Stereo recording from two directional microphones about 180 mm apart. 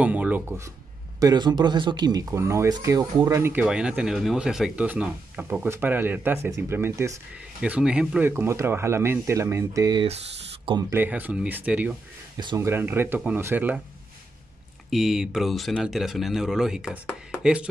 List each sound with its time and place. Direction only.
0.0 s speech: 10° right (ahead or behind)
1.2 s speech: 25° right (ahead or behind)
10.0 s speech: 30° right (ahead or behind)
10.9 s speech: 10° right (ahead or behind)
12.4 s speech: 20° right (ahead or behind)
14.9 s speech: centre (ahead or behind)